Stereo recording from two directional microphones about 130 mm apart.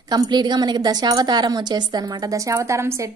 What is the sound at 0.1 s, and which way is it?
A woman's voice, 30° right (ahead or behind).